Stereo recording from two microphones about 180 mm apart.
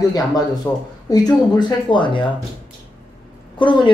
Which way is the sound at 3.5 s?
25° left (ahead or behind).